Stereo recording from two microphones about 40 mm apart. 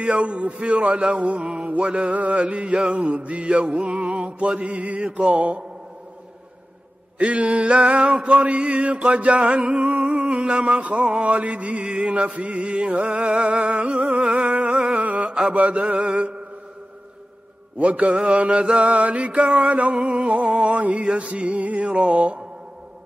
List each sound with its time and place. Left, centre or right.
0.0 s a sound: right
1.8 s chant: right
7.2 s chant: right
9.8 s humming: centre
10.4 s a sound: right
11.3 s chant: right
11.9 s a sound: right
14.1 s chant: right
15.0 s music: right
15.6 s chant: right
16.2 s mantra: right
17.7 s chant: right